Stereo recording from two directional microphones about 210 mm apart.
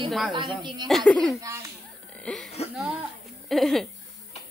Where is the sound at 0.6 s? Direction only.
20° right (ahead or behind).